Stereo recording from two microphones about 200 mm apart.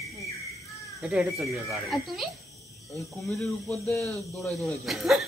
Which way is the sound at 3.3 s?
5° left (ahead or behind).